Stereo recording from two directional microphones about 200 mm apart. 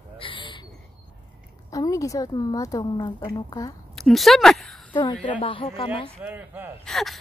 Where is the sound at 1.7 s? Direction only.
15° left (ahead or behind).